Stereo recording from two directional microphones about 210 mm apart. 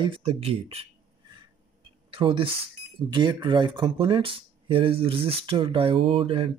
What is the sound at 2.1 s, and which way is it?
Speech, 25° right (ahead or behind).